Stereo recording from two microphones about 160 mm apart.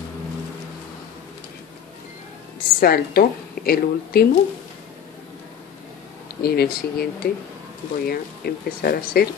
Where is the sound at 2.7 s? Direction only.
70° left (ahead or behind).